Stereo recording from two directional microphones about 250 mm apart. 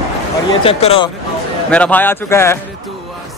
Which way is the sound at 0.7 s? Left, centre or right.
Left.